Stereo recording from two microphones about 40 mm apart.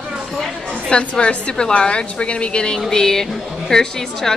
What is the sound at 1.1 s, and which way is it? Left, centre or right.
A woman's voice, left.